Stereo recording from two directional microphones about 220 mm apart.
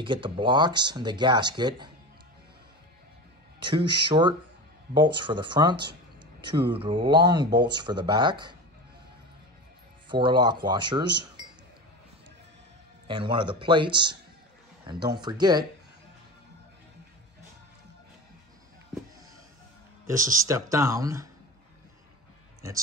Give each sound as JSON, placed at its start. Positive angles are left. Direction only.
{"t": 0.0, "sound": "speech", "side_deg": -20}
{"t": 3.6, "sound": "speech", "side_deg": -20}
{"t": 10.0, "sound": "speech", "side_deg": -20}
{"t": 13.0, "sound": "speech", "side_deg": -20}
{"t": 20.1, "sound": "speech", "side_deg": -15}